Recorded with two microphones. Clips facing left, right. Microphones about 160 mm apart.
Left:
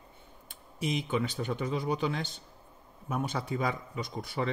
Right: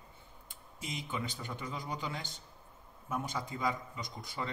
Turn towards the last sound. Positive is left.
turn(degrees=70)  # may be behind; listen again after turning